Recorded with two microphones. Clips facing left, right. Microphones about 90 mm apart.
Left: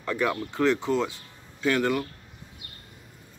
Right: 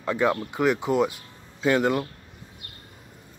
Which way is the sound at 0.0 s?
20° right (ahead or behind).